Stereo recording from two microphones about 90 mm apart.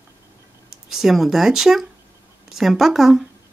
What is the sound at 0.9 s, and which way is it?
Speech, 5° right (ahead or behind).